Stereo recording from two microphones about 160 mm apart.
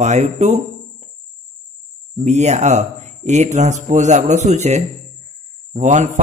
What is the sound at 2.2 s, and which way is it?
Speech, 45° right (ahead or behind).